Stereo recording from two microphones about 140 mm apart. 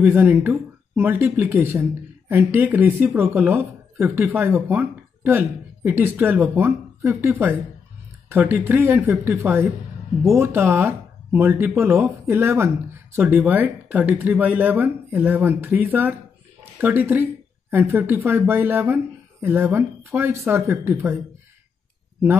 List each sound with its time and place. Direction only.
0.0 s speech: 10° right (ahead or behind)